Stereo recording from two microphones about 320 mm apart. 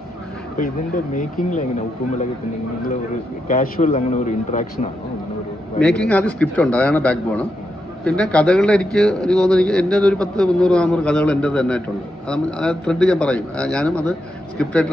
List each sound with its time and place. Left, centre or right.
0.6 s speech: left
3.4 s speech: left
5.8 s a man's voice: centre